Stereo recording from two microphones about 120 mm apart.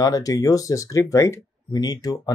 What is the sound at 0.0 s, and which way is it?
Speech, 30° left (ahead or behind).